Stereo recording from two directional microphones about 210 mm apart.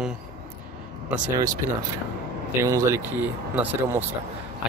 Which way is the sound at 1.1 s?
5° right (ahead or behind).